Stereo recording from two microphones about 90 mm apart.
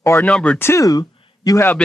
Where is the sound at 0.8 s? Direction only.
45° left (ahead or behind).